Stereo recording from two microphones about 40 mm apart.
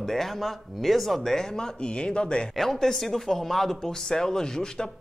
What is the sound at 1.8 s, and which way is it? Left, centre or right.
Speech, left.